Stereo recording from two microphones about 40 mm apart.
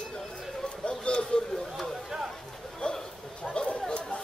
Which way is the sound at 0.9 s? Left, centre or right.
Left.